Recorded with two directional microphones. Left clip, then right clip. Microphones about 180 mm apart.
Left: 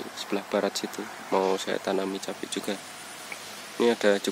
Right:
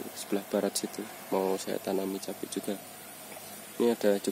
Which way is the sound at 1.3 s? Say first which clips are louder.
Left 5 dB; centre (ahead or behind).